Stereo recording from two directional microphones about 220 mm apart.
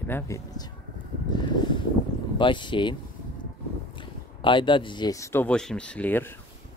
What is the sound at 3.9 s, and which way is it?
Speech, 20° left (ahead or behind).